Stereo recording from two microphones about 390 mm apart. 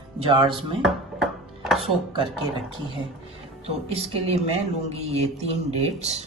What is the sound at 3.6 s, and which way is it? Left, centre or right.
Speech, centre.